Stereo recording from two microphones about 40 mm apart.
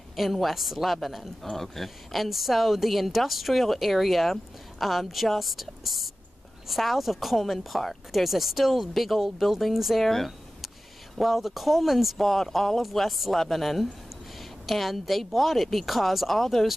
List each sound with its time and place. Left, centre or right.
0.1 s a woman's voice: centre